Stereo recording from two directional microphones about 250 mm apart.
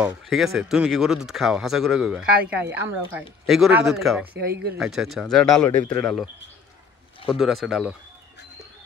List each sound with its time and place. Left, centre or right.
0.0 s speech: centre
4.5 s speech: right
4.7 s speech: centre
7.2 s speech: centre